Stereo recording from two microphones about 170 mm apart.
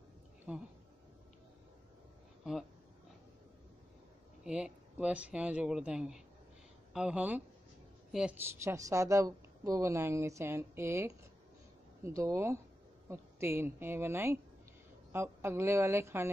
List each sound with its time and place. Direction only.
0.5 s a woman's voice: 10° right (ahead or behind)
4.5 s a woman's voice: 5° right (ahead or behind)